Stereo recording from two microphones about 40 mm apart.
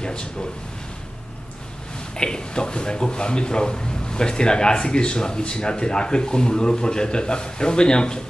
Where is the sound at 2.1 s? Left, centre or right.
Centre.